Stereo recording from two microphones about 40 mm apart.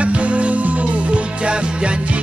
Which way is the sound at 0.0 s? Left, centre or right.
Right.